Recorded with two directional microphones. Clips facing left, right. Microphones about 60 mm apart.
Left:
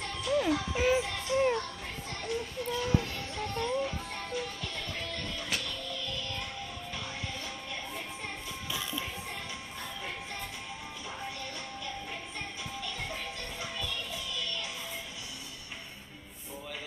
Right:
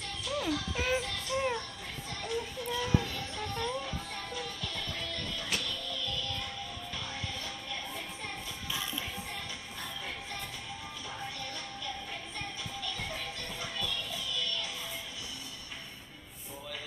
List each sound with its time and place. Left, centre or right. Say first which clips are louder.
0.0 s music: left 5 dB; left
2.2 s child singing: left 1 dB; left
3.3 s music: left 4 dB; centre
7.4 s music: left 1 dB; centre
12.4 s music: right 1 dB; centre